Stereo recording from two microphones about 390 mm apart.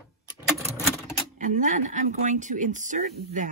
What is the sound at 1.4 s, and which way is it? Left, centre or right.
Speech, centre.